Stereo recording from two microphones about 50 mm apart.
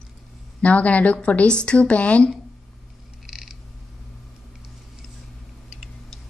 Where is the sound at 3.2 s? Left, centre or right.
Centre.